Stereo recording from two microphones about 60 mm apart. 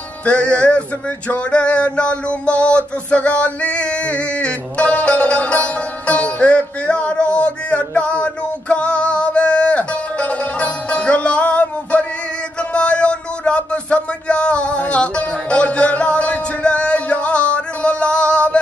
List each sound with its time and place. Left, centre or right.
0.2 s music: centre
2.6 s male singing: centre
12.7 s speech: centre